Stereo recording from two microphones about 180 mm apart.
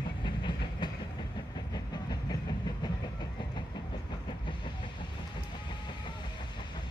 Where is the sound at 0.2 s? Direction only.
25° left (ahead or behind).